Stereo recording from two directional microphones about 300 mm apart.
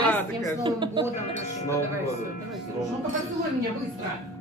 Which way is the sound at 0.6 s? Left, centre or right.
Centre.